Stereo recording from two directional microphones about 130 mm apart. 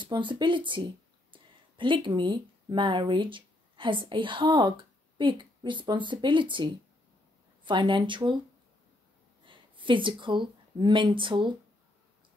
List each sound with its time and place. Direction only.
0.0 s speech: 40° right (ahead or behind)
9.5 s speech: 40° right (ahead or behind)